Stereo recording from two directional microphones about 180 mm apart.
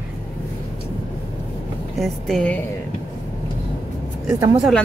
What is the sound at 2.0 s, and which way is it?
Speech, 5° left (ahead or behind).